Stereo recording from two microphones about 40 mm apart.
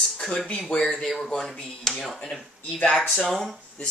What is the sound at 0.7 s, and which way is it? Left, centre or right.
Speech, centre.